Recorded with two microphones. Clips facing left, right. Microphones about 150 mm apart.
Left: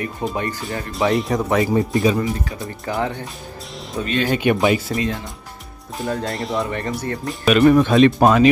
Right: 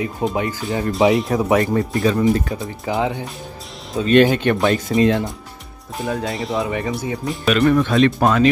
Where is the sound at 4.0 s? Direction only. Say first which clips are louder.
Right 4 dB; 20° right (ahead or behind).